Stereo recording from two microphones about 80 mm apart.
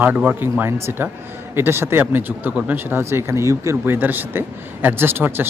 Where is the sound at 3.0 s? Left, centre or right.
Right.